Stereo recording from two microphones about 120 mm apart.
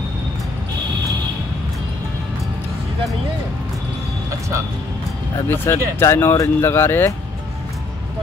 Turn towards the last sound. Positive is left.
turn(degrees=20)  # may be behind; listen again after turning